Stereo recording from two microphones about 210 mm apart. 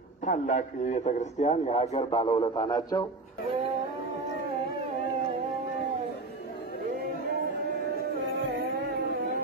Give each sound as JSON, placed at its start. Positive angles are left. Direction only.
{"t": 0.2, "sound": "a man's voice", "side_deg": 35}